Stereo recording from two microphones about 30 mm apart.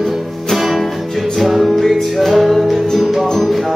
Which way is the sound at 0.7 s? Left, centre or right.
Centre.